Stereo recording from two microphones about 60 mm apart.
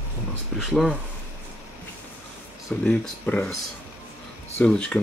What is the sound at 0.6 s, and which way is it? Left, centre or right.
Speech, centre.